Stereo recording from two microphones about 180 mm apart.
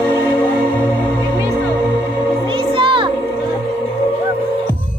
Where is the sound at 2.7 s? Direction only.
30° right (ahead or behind).